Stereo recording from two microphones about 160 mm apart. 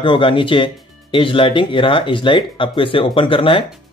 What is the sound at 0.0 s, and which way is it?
Speech, 30° left (ahead or behind).